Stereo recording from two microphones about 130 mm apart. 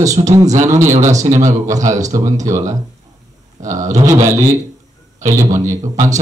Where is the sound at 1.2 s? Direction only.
70° right (ahead or behind).